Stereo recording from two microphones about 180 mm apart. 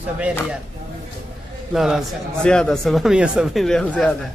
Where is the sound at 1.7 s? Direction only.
Centre (ahead or behind).